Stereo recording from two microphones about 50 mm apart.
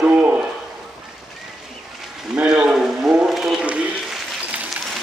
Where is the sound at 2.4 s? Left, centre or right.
Centre.